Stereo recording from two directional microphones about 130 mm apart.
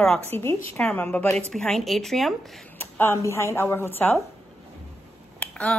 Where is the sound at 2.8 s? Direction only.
15° left (ahead or behind).